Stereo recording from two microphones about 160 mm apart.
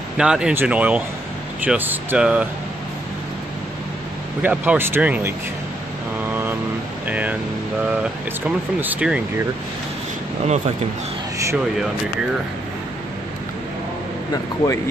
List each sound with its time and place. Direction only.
0.2 s speech: 5° right (ahead or behind)
4.4 s speech: 10° right (ahead or behind)
7.1 s speech: 10° right (ahead or behind)
14.3 s speech: 20° left (ahead or behind)